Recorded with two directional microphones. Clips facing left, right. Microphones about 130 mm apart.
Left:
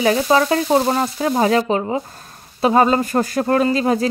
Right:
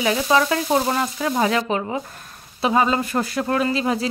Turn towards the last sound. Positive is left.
turn(degrees=45)  # may be behind; listen again after turning